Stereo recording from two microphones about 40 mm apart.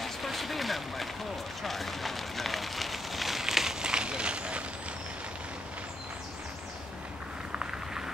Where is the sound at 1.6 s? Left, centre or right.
Centre; by 4.6 s right.